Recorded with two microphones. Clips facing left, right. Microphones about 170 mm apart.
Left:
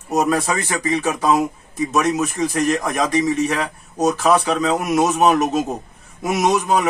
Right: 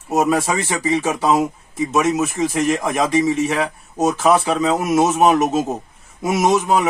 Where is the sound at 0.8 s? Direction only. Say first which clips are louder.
Right 1 dB; 30° right (ahead or behind).